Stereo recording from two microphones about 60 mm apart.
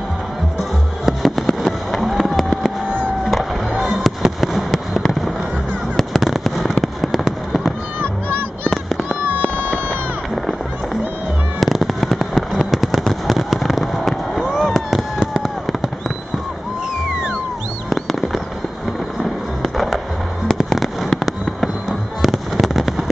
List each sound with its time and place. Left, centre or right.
1.0 s fireworks: centre
3.3 s music: centre
4.4 s a sound: centre
5.9 s fireworks: centre
8.0 s music: right
8.6 s fireworks: centre
11.6 s fireworks: centre
17.8 s fireworks: centre
19.6 s music: centre
20.4 s fireworks: centre